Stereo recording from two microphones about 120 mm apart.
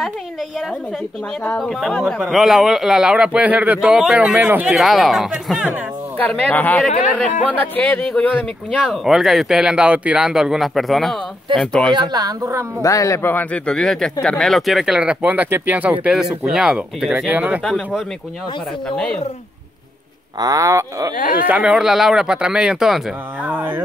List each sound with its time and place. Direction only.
1.6 s speech: centre (ahead or behind)
4.7 s speech: centre (ahead or behind)
6.1 s speech: 15° left (ahead or behind)
9.0 s speech: centre (ahead or behind)
11.9 s speech: 35° right (ahead or behind)
12.8 s speech: 25° left (ahead or behind); by 17.6 s 15° right (ahead or behind)
17.6 s speech: 5° left (ahead or behind)
20.3 s speech: 30° right (ahead or behind)
21.5 s speech: 10° right (ahead or behind)
23.4 s speech: 15° right (ahead or behind)